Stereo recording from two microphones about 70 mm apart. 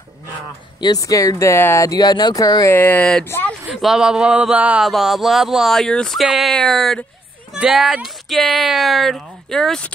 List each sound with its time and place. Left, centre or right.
0.9 s speech: left
1.8 s speech: left
2.3 s speech: left
2.7 s speech: left
3.0 s speech: centre
3.6 s speech: centre
4.0 s a sound: centre
4.8 s speech: centre
6.1 s speech: centre
7.5 s a sound: centre
8.4 s speech: centre